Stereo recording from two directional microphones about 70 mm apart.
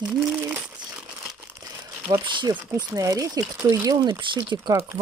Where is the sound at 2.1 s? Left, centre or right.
Right.